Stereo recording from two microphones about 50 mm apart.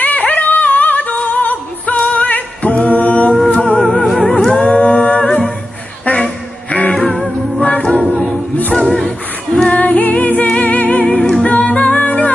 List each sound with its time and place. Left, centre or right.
0.0 s music: left
2.2 s a capella: left
3.4 s music: left
4.0 s music: centre
4.6 s humming: left
6.0 s music: left
6.9 s music: centre
8.0 s a capella: right
8.7 s vocal music: centre
9.7 s music: left
9.9 s music: left
10.4 s music: centre
10.7 s music: left
11.4 s a capella: left